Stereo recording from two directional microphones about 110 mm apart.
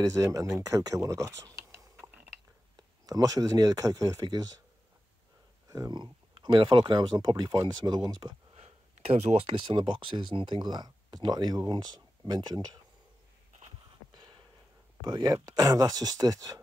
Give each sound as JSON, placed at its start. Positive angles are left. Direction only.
{"t": 0.0, "sound": "speech", "side_deg": -30}
{"t": 3.1, "sound": "speech", "side_deg": -35}
{"t": 5.7, "sound": "speech", "side_deg": -35}
{"t": 8.5, "sound": "speech", "side_deg": -70}
{"t": 14.1, "sound": "a sound", "side_deg": -40}
{"t": 15.0, "sound": "speech", "side_deg": -35}